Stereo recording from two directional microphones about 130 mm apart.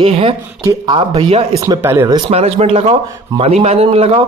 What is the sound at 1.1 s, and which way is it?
Speech, 50° right (ahead or behind).